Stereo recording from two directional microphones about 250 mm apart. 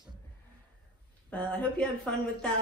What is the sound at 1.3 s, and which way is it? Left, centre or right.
Speech, centre.